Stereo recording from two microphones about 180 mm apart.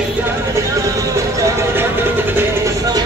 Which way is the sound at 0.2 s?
15° right (ahead or behind).